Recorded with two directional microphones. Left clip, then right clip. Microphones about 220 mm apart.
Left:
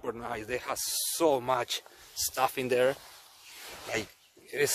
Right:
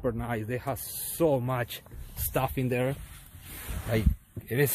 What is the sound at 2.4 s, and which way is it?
Speech, 15° left (ahead or behind).